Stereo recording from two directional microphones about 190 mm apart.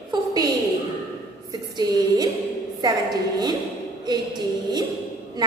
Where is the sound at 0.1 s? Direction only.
20° right (ahead or behind).